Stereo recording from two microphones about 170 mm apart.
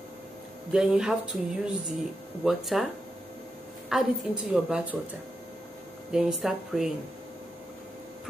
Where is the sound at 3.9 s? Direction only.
5° right (ahead or behind).